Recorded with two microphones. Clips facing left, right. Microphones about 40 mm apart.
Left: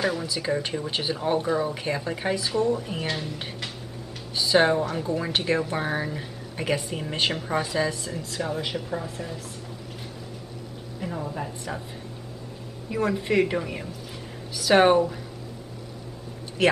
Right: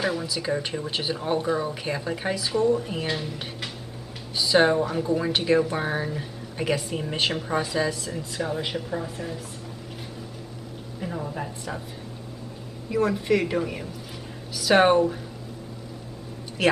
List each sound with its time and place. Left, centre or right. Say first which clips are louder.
0.0 s a woman's voice: even; centre
8.4 s a woman's voice: right 1 dB; centre
11.0 s a woman's voice: even; centre
12.9 s a woman's voice: right 1 dB; centre